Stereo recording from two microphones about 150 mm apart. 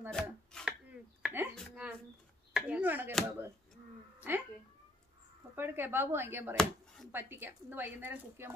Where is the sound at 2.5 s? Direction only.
10° right (ahead or behind).